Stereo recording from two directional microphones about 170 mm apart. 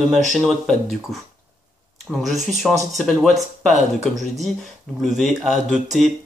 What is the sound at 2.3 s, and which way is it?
Speech, 45° right (ahead or behind).